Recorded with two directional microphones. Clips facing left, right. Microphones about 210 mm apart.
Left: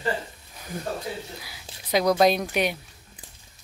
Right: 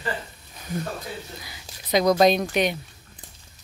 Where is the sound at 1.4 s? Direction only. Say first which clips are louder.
Even; 5° left (ahead or behind).